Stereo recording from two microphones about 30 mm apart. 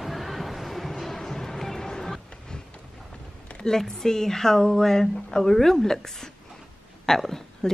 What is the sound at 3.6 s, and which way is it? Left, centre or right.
Speech, centre.